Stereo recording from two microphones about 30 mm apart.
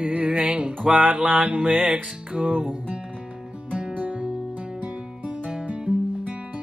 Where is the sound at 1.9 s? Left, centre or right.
Right.